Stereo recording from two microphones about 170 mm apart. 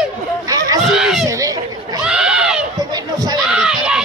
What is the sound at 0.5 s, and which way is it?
Chatter, 20° right (ahead or behind).